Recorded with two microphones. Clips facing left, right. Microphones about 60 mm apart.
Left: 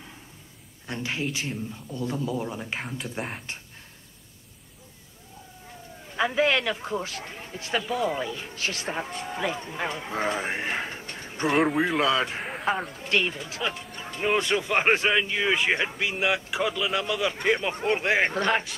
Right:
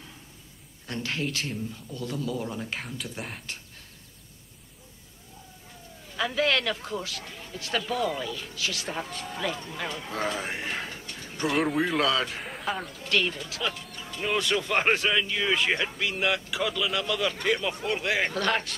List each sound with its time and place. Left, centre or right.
0.8 s speech: centre
6.0 s speech: left
7.8 s speech: centre
8.1 s speech: left
11.5 s speech: centre
12.1 s speech: left